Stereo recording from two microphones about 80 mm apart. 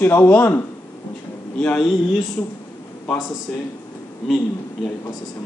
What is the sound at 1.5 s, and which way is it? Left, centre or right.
Speech, centre.